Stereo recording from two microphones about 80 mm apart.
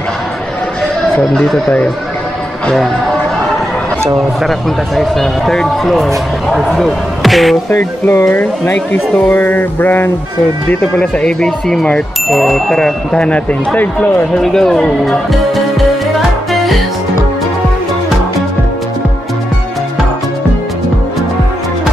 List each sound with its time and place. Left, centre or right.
1.1 s speech: centre
4.4 s speech: centre
7.7 s speech: left
10.7 s speech: centre
13.7 s speech: left
14.3 s speech: centre